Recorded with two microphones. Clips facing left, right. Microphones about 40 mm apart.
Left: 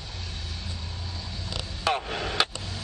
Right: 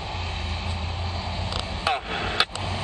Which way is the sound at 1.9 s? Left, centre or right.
Right.